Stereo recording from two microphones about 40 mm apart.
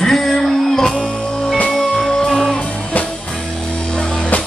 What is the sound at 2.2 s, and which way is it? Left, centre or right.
Music, centre.